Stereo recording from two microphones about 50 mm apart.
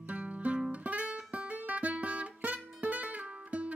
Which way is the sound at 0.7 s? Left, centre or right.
Right.